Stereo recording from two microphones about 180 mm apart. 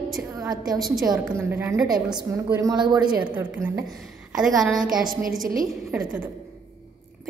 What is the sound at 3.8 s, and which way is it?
Speech, centre (ahead or behind).